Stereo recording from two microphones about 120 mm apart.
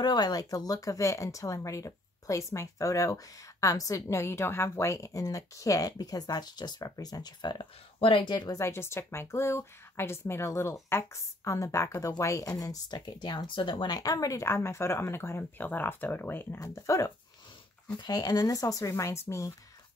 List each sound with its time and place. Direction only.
0.0 s speech: 35° left (ahead or behind)